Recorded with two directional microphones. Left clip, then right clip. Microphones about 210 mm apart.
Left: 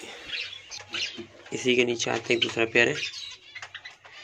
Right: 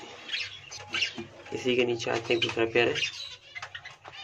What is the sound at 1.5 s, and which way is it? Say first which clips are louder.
Speech: left 3 dB; 25° left (ahead or behind).